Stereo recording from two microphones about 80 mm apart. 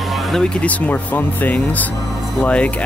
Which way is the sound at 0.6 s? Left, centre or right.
Left.